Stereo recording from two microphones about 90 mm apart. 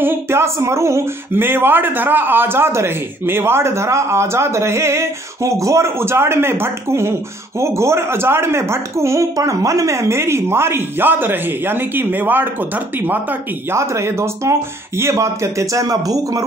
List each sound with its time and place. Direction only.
0.0 s speech: 25° right (ahead or behind)